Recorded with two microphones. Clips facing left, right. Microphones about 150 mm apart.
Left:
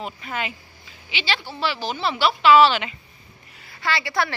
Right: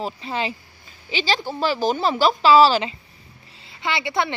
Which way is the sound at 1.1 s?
40° right (ahead or behind).